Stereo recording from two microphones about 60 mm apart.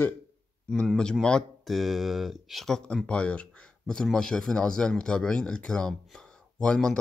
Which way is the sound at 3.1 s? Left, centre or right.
Centre.